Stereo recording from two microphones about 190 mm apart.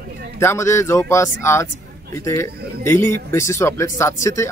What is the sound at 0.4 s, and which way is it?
Speech, 15° left (ahead or behind).